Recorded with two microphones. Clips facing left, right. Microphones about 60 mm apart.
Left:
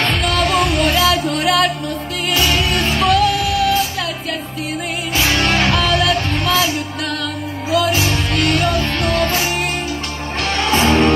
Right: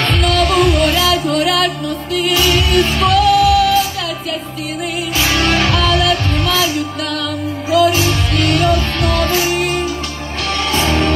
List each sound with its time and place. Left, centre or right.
0.2 s music: left
0.6 s music: centre
2.3 s music: centre
2.7 s music: centre
5.1 s music: centre
5.6 s music: centre
8.0 s music: centre
9.2 s music: centre
10.7 s music: left